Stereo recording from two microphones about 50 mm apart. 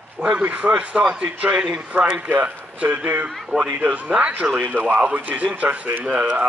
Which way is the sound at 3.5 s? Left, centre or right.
Right.